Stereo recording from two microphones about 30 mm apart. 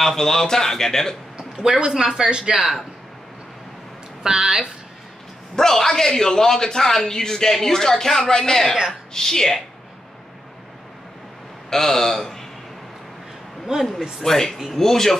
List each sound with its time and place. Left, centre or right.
0.0 s a man's voice: centre
1.9 s speech: centre
4.2 s speech: right
5.6 s a man's voice: centre
11.7 s a man's voice: centre
13.7 s speech: right
14.2 s a man's voice: centre